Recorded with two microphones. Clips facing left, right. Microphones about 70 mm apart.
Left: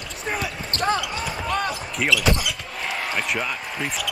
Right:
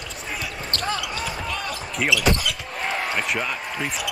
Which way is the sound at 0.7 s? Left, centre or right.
Left.